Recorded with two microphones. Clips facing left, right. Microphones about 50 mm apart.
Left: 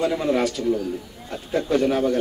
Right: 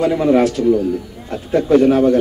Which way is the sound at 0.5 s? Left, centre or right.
Right.